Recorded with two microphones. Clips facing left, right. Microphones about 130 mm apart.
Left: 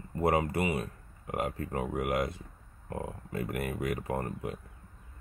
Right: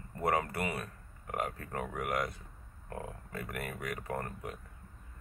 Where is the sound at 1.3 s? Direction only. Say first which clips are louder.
Left 4 dB; 25° left (ahead or behind).